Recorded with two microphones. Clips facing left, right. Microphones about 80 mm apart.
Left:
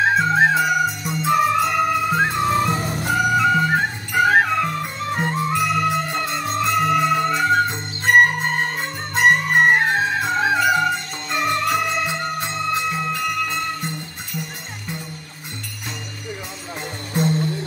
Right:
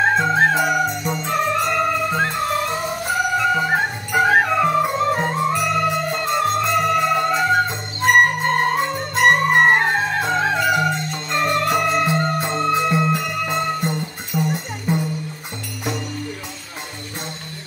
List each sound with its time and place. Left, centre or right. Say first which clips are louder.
0.0 s music: even; centre
3.1 s music: left 2 dB; centre
9.1 s music: right 1 dB; centre
13.1 s music: right 2 dB; centre
14.3 s music: right 9 dB; right